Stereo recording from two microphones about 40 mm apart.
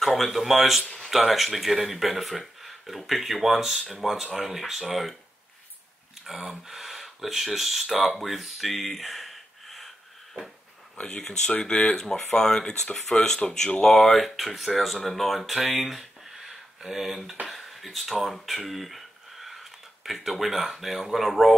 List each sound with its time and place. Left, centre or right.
0.0 s speech: centre
0.8 s speech: left
1.1 s speech: centre
6.2 s speech: centre
11.0 s speech: left
13.9 s speech: centre